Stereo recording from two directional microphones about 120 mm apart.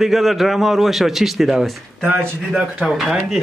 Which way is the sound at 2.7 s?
5° right (ahead or behind).